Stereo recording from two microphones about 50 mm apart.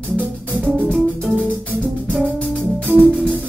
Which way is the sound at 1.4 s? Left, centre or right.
Left.